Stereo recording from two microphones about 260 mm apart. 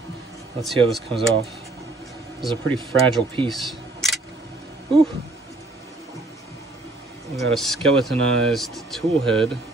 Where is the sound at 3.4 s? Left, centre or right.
Centre.